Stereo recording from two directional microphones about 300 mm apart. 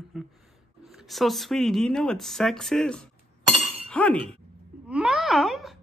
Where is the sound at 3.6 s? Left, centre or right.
Centre.